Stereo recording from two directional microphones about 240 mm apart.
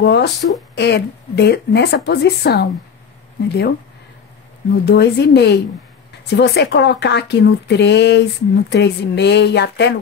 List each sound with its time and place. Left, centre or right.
0.0 s speech: left
4.8 s speech: left